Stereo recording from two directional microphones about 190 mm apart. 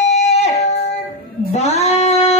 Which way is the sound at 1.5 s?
35° left (ahead or behind).